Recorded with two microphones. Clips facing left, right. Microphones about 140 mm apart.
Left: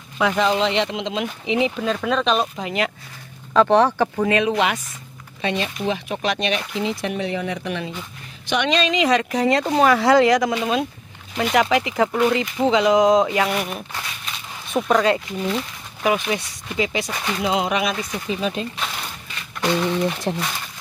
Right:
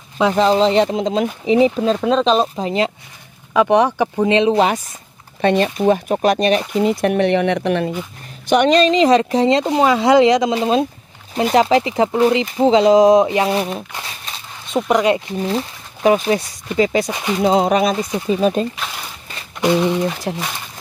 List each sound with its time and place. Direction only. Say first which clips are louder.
0.2 s speech: right 5 dB; 30° right (ahead or behind)
3.5 s speech: right 2 dB; 15° right (ahead or behind); by 4.7 s 30° right (ahead or behind)
5.4 s speech: right 9 dB; 50° right (ahead or behind)
6.8 s speech: right 9 dB; 55° right (ahead or behind)
8.5 s speech: right 8 dB; 40° right (ahead or behind)
14.9 s speech: right 3 dB; 20° right (ahead or behind)
15.2 s speech: right 4 dB; 30° right (ahead or behind)
17.1 s speech: right 5 dB; 15° right (ahead or behind)
17.4 s speech: right 7 dB; 35° right (ahead or behind)
18.8 s a sound: right 1 dB; centre (ahead or behind)
19.6 s speech: right 5 dB; 15° right (ahead or behind)
20.1 s speech: right 1 dB; 5° right (ahead or behind)